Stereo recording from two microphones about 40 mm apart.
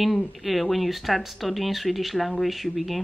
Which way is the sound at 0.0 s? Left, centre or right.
Centre.